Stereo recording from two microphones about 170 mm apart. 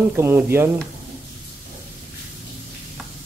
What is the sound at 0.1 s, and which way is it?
Speech, 15° right (ahead or behind).